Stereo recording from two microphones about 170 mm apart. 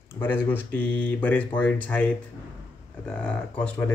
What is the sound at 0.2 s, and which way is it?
Speech, 10° left (ahead or behind).